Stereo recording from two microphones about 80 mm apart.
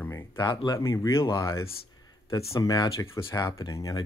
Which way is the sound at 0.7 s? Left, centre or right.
Left.